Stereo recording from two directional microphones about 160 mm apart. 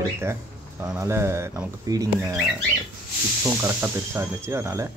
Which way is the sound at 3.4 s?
15° right (ahead or behind).